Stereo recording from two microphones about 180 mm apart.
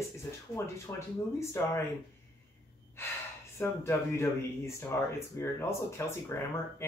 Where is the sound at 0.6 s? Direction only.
15° left (ahead or behind).